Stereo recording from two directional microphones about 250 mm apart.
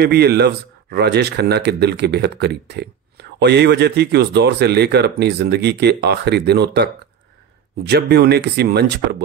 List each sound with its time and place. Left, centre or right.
0.0 s speech: right